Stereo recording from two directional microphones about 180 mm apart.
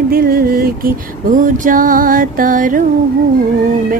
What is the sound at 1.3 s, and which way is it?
Music, 45° right (ahead or behind).